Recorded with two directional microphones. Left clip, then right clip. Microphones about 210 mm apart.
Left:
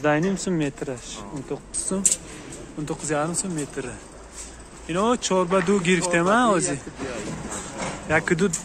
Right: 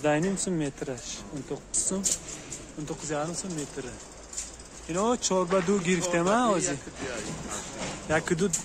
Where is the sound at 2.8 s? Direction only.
10° left (ahead or behind).